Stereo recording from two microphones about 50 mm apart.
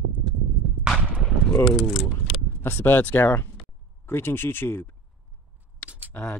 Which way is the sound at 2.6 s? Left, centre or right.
Left.